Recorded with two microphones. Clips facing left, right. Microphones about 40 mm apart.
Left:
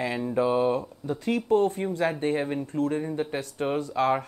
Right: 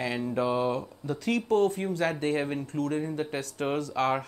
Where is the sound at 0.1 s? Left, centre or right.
Centre.